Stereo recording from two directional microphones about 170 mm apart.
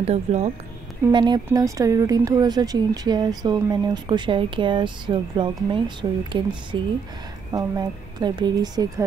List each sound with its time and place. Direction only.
0.0 s speech: 40° right (ahead or behind)
1.1 s speech: 25° right (ahead or behind)